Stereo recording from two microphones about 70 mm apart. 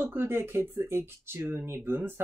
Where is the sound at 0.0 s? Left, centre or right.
Right.